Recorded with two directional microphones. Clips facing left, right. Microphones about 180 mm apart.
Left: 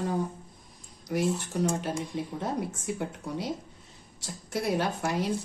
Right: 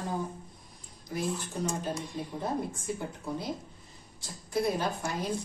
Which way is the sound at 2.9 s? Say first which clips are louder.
Left 2 dB; 75° left (ahead or behind).